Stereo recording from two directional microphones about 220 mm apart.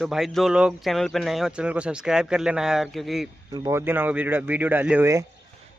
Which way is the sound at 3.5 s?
15° right (ahead or behind).